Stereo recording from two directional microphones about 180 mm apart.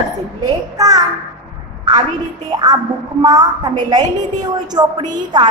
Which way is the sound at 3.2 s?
25° right (ahead or behind).